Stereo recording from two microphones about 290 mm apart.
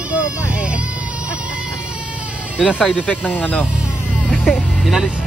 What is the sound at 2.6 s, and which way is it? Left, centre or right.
Speech, centre.